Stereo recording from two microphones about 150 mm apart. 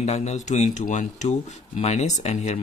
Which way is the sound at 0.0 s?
50° left (ahead or behind).